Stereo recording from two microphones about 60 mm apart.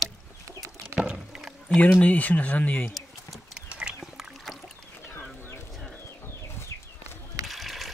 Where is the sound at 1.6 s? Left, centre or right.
Centre.